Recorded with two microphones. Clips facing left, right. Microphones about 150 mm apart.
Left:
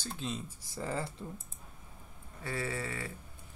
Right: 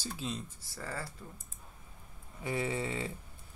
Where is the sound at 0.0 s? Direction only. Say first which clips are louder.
Even; 5° right (ahead or behind).